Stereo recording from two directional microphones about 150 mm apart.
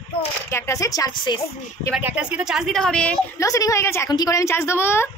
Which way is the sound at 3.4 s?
20° left (ahead or behind).